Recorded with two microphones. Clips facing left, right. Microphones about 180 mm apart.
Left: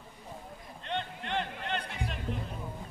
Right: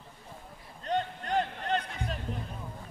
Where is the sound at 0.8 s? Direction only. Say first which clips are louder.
Right 5 dB; 40° right (ahead or behind).